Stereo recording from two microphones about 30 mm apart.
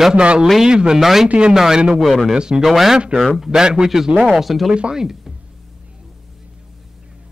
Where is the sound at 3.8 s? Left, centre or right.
Centre.